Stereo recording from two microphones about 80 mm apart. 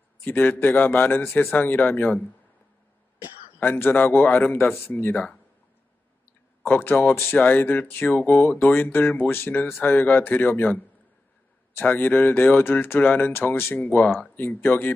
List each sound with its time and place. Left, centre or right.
0.2 s speech: left
3.5 s speech: left
6.6 s speech: left